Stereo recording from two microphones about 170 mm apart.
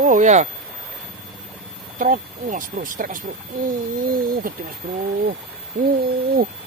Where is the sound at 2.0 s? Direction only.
55° right (ahead or behind).